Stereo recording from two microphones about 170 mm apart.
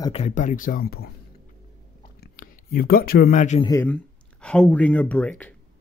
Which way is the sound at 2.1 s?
60° left (ahead or behind).